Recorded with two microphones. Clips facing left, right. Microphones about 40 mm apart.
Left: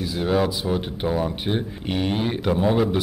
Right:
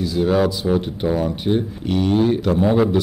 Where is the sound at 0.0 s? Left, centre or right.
Centre.